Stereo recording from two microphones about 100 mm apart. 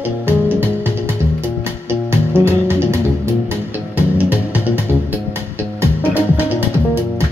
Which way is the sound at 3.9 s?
15° right (ahead or behind).